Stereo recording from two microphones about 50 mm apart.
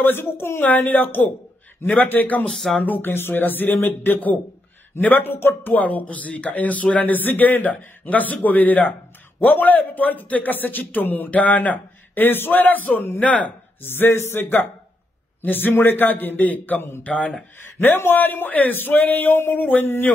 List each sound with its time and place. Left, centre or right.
0.0 s a man's voice: left
2.5 s music: centre
2.8 s speech: left
13.7 s a man's voice: left
17.7 s speech: left